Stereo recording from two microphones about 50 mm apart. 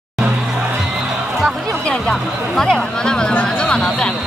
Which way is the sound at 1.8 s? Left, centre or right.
Centre.